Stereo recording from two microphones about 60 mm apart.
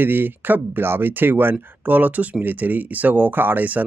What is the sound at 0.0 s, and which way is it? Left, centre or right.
Speech, right.